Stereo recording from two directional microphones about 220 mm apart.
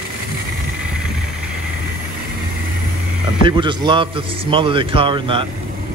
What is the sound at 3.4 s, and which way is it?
Speech, 20° right (ahead or behind).